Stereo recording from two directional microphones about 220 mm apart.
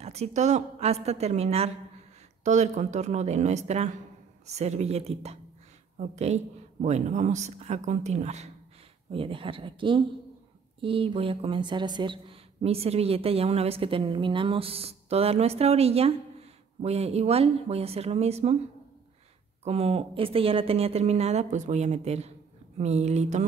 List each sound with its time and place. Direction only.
0.0 s speech: 30° right (ahead or behind)
19.6 s speech: 30° right (ahead or behind)